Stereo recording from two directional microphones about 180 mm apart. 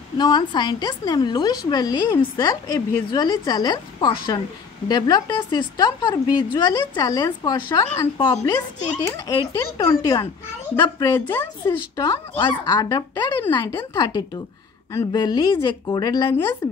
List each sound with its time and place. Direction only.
0.2 s a woman's voice: 25° left (ahead or behind)
11.6 s a woman's voice: 25° left (ahead or behind)